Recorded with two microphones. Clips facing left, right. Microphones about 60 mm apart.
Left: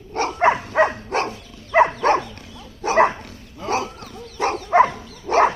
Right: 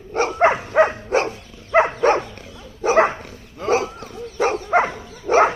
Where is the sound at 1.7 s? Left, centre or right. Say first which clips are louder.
Left 1 dB; centre.